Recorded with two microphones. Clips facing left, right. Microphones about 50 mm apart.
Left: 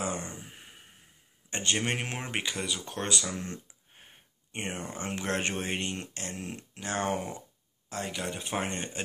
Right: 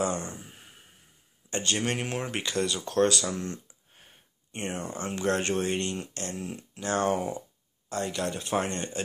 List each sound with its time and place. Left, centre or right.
0.0 s speech: centre
1.5 s speech: left
3.9 s a sound: left
4.6 s speech: centre
5.0 s speech: left
6.4 s speech: left
6.8 s speech: left
7.9 s speech: centre